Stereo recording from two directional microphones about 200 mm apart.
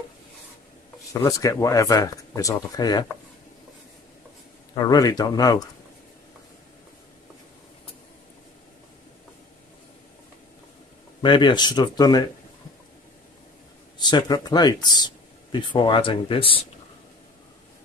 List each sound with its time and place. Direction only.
1.1 s speech: 15° left (ahead or behind)
4.7 s speech: 20° left (ahead or behind)
11.2 s speech: 25° left (ahead or behind)
14.1 s speech: 20° left (ahead or behind)